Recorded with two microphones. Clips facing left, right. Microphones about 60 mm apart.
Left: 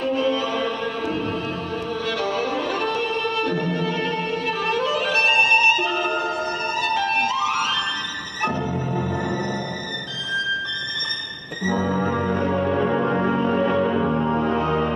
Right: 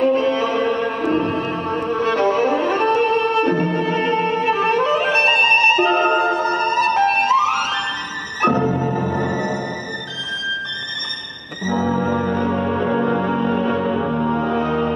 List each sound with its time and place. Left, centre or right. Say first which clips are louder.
0.0 s music: right 5 dB; right
12.4 s music: right 1 dB; centre
13.0 s music: right 2 dB; left
13.9 s music: right 1 dB; centre